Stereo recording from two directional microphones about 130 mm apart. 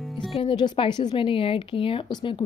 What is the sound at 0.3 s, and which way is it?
Speech, 40° left (ahead or behind).